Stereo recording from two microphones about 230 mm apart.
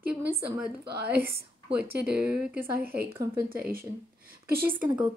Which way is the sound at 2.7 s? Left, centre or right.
Right.